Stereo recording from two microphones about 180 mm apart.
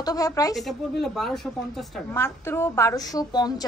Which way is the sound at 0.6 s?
Centre (ahead or behind).